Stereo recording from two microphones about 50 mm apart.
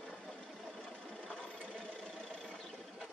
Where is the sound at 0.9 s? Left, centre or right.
Centre.